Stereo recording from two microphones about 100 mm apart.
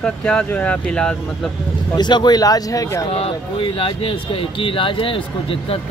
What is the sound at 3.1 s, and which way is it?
Speech, 75° left (ahead or behind).